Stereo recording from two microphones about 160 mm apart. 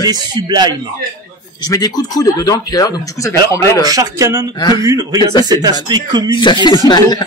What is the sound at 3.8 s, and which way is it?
Speech, 20° right (ahead or behind).